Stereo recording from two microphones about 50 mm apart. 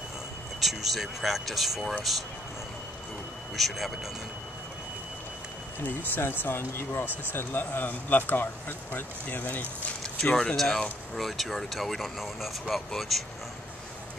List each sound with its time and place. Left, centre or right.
0.6 s speech: centre
3.5 s speech: centre
5.9 s speech: left
10.3 s speech: centre